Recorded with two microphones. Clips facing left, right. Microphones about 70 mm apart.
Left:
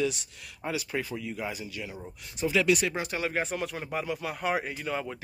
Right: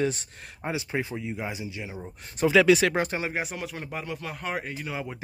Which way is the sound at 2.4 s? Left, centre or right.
Right.